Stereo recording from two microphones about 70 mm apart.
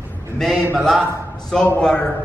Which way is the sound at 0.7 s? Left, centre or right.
Centre.